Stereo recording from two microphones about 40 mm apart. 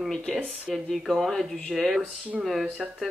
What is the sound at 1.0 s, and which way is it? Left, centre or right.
Speech, centre.